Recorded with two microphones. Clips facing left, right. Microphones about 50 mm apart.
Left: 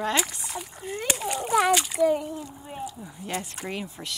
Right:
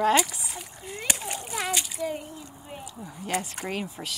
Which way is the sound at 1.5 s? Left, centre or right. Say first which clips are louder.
Left 11 dB; left.